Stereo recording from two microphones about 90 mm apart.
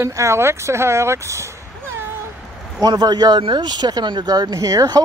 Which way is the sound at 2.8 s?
50° right (ahead or behind).